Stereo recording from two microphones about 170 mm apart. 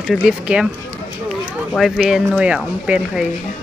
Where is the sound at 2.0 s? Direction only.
5° right (ahead or behind).